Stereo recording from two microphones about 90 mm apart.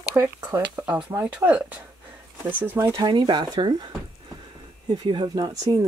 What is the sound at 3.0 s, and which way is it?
Speech, 55° right (ahead or behind).